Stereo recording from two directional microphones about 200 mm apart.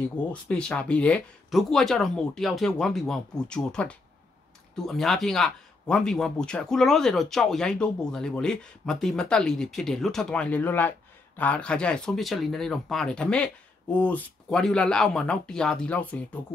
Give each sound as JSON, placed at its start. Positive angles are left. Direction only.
{"t": 0.3, "sound": "speech", "side_deg": 5}